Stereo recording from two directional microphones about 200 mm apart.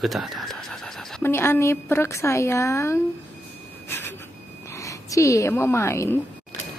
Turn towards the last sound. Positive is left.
turn(degrees=15)  # may be behind; listen again after turning